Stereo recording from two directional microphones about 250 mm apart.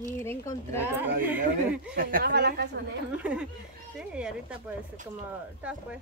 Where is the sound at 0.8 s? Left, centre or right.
Centre.